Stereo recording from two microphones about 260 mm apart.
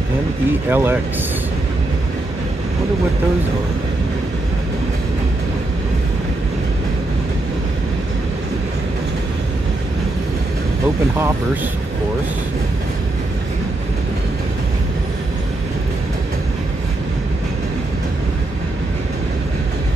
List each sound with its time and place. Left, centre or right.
0.5 s speech: centre